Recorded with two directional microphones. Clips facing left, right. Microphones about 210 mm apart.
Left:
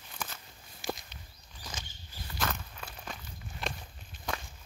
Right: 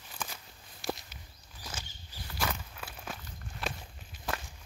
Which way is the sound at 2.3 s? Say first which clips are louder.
Even; 10° right (ahead or behind).